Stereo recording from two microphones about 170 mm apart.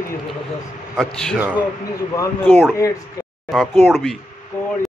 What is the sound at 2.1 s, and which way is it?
Speech, 10° left (ahead or behind).